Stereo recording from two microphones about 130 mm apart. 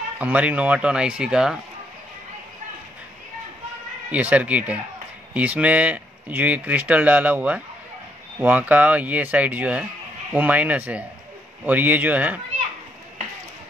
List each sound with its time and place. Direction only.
0.2 s speech: 10° right (ahead or behind)
4.1 s speech: 10° right (ahead or behind)